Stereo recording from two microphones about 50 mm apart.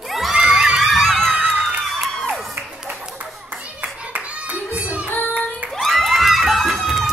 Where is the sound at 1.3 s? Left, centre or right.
Right.